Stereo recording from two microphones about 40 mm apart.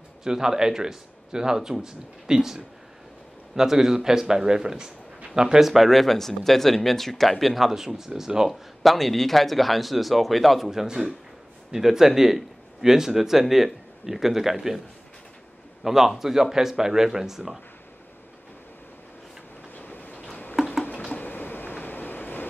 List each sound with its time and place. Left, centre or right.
0.2 s a man's voice: centre
5.7 s a man's voice: centre
8.5 s speech: centre
10.7 s a man's voice: centre
15.8 s a man's voice: centre
19.7 s train: left
20.6 s a sound: centre
21.2 s train: left